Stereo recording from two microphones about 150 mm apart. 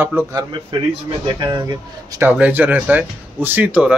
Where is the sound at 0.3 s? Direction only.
30° right (ahead or behind).